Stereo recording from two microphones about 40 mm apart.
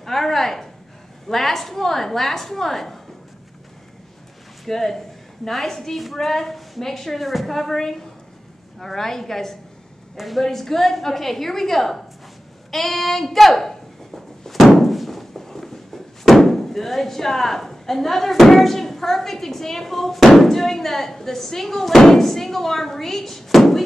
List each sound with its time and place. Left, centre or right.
0.0 s a sound: centre
1.3 s a woman's voice: centre
4.6 s a woman's voice: centre
10.1 s a woman's voice: centre